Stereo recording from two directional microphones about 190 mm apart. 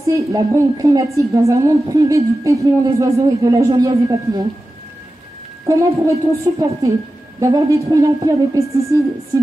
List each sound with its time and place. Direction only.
0.0 s a woman's voice: 15° right (ahead or behind)
5.7 s a woman's voice: 15° right (ahead or behind)